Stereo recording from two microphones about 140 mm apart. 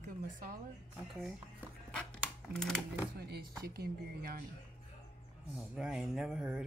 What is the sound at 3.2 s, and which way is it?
Speech, 90° right.